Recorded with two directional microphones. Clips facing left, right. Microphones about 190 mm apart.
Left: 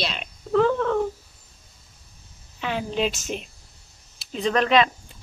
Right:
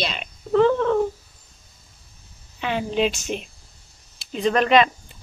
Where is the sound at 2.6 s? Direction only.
Centre (ahead or behind).